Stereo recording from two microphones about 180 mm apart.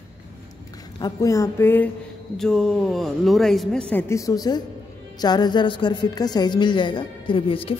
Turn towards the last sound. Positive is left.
turn(degrees=30)  # may be behind; listen again after turning